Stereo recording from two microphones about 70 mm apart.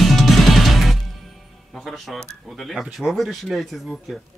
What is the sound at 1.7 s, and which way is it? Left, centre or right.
Speech, centre.